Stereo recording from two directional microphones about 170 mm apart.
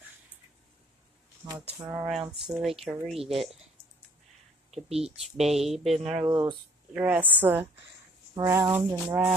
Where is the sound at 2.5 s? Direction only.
Centre (ahead or behind).